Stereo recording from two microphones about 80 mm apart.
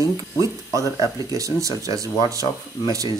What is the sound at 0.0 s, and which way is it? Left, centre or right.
Speech, right.